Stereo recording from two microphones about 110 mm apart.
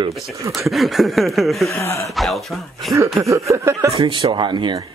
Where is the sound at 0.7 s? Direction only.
Centre (ahead or behind).